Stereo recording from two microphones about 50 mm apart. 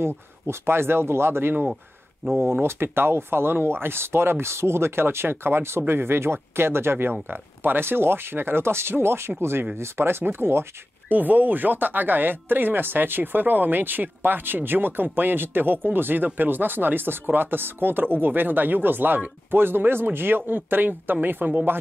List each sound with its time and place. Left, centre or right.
0.0 s speech: right
11.1 s speech: right